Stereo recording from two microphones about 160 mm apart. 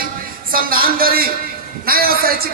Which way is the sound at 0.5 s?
65° right (ahead or behind).